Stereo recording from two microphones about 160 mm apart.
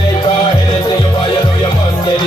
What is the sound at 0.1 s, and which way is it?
Music, 25° left (ahead or behind).